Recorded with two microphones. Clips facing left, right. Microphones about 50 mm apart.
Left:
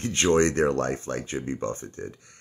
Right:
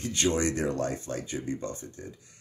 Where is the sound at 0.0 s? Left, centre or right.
Left.